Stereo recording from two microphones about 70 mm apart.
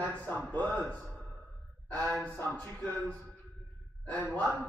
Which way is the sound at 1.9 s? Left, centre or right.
Left.